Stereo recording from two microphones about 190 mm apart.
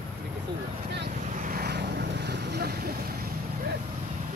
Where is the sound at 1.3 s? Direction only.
45° right (ahead or behind).